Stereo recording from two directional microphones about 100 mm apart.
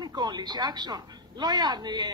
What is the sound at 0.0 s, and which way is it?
Speech, 45° right (ahead or behind).